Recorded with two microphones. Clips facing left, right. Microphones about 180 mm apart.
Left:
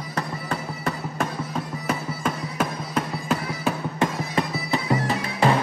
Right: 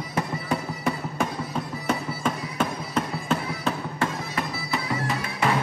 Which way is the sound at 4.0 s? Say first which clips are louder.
Left 4 dB; 25° left (ahead or behind).